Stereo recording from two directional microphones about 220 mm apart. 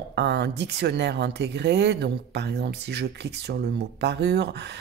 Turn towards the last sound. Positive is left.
turn(degrees=-50)  # may be behind; listen again after turning